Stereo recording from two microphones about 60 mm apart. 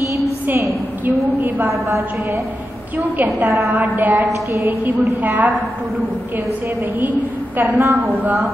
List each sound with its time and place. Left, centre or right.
1.0 s a woman's voice: right
1.7 s a woman's voice: right
3.9 s a woman's voice: right
7.0 s a woman's voice: right
7.8 s a woman's voice: right